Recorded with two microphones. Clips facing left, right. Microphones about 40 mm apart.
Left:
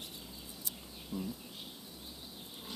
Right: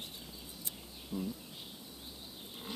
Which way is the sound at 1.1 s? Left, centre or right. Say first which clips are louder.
Right 1 dB; centre.